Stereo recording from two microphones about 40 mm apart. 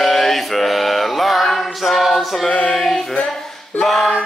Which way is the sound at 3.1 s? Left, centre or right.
Centre.